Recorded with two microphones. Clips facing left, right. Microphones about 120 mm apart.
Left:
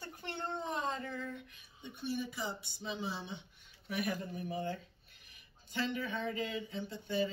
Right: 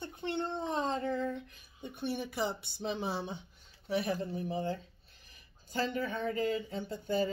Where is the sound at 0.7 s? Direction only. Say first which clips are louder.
Right 6 dB; 30° right (ahead or behind).